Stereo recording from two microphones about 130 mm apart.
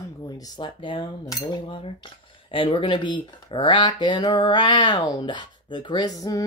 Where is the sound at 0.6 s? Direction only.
40° left (ahead or behind).